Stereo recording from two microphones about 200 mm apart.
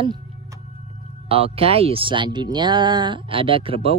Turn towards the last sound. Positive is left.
turn(degrees=-25)  # may be behind; listen again after turning